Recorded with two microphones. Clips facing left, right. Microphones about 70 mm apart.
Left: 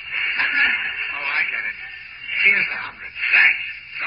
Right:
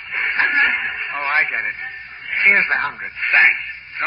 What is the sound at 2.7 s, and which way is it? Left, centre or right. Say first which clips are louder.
Speech: right 9 dB; right.